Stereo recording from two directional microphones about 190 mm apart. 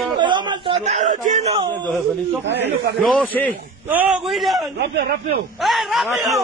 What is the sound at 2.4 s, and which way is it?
Speech, 65° right (ahead or behind).